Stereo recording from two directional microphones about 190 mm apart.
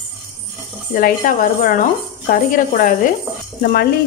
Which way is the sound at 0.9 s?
45° left (ahead or behind).